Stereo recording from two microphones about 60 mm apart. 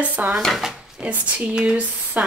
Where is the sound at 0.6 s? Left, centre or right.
Centre.